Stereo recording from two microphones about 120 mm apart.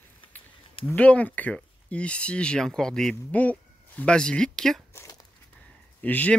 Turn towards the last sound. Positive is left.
turn(degrees=15)  # may be behind; listen again after turning